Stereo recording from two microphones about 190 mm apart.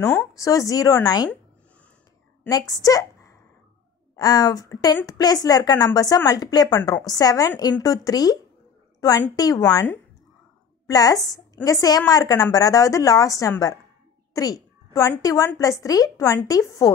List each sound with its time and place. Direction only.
0.0 s a woman's voice: 10° left (ahead or behind)
2.5 s a woman's voice: 20° left (ahead or behind)
10.9 s a woman's voice: 20° left (ahead or behind)